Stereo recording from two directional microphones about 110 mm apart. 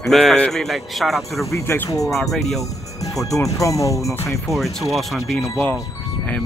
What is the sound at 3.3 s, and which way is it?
Speech, 30° left (ahead or behind).